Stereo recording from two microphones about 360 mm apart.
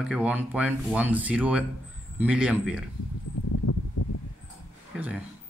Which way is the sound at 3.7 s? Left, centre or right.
Left.